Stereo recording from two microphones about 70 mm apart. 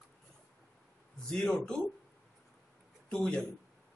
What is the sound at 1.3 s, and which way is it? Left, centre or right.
Speech, centre.